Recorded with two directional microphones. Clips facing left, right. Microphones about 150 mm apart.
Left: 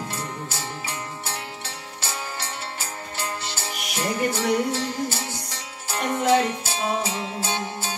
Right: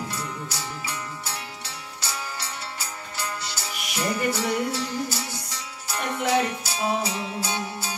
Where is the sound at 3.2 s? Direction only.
25° left (ahead or behind).